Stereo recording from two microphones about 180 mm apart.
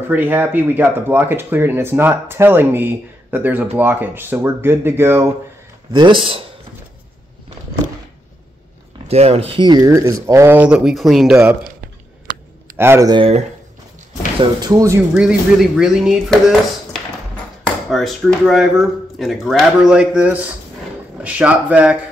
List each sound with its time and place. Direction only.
0.1 s speech: 10° right (ahead or behind)
5.9 s speech: 30° right (ahead or behind)
9.0 s speech: 35° right (ahead or behind); by 11.5 s 5° right (ahead or behind)
12.7 s speech: 15° right (ahead or behind)
13.1 s speech: 30° right (ahead or behind)
14.4 s speech: 20° right (ahead or behind)
15.1 s speech: 5° right (ahead or behind)
17.8 s speech: centre (ahead or behind)